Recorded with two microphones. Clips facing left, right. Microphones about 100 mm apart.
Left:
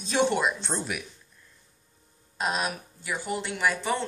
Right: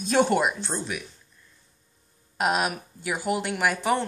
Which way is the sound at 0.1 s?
50° right (ahead or behind).